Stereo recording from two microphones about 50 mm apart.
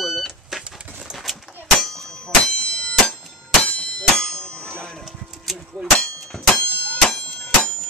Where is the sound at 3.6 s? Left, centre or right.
Centre.